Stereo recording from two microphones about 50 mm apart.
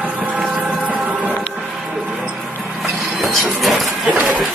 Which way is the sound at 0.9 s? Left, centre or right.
Centre.